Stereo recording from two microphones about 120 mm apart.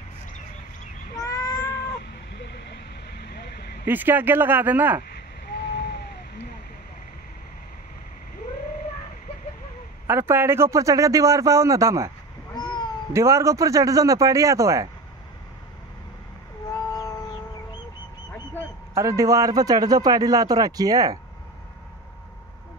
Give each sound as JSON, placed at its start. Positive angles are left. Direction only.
{"t": 1.1, "sound": "cat", "side_deg": 30}
{"t": 3.8, "sound": "speech", "side_deg": -15}
{"t": 10.0, "sound": "a man's voice", "side_deg": -20}
{"t": 12.5, "sound": "cat", "side_deg": 40}
{"t": 13.1, "sound": "a man's voice", "side_deg": -25}
{"t": 16.7, "sound": "a sound", "side_deg": 30}
{"t": 18.9, "sound": "speech", "side_deg": -25}